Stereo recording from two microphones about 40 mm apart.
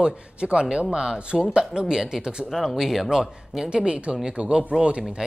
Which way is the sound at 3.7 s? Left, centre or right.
Right.